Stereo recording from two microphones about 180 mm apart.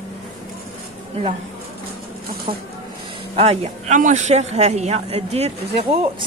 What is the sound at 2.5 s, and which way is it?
A man's voice, 30° right (ahead or behind).